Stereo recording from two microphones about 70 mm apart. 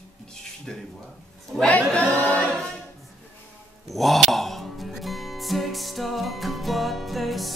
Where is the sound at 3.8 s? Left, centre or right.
Centre.